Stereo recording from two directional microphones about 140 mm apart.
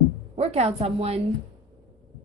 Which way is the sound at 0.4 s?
45° right (ahead or behind).